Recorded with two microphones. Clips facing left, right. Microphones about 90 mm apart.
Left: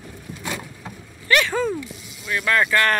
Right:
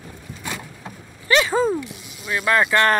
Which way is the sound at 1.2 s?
25° right (ahead or behind).